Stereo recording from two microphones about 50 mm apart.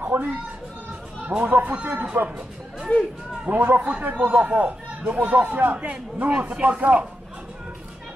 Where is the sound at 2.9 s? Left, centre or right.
Left.